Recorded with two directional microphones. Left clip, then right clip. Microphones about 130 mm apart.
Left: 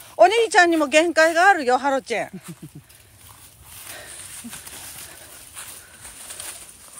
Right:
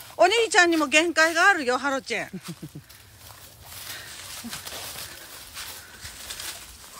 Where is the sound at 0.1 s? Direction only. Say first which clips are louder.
Left 4 dB; 10° right (ahead or behind).